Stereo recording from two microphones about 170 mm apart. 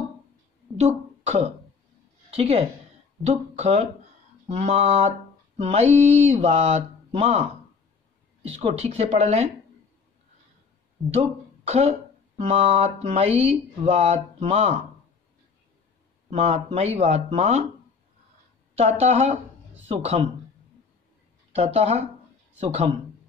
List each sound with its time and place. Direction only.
0.7 s a woman's voice: 40° right (ahead or behind)
11.1 s speech: 40° right (ahead or behind)
16.3 s speech: 40° right (ahead or behind)
18.8 s speech: 40° right (ahead or behind)
21.5 s speech: 40° right (ahead or behind)